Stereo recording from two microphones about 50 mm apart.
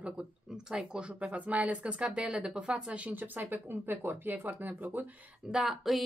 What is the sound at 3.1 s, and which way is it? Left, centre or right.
Speech, right.